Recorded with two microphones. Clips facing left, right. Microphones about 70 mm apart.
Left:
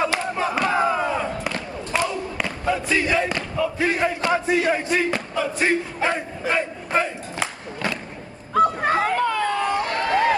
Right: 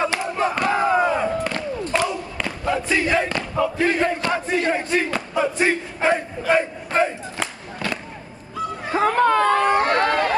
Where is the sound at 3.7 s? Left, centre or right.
Centre.